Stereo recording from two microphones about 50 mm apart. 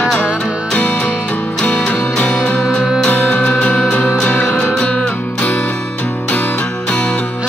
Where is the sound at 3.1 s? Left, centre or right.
Left.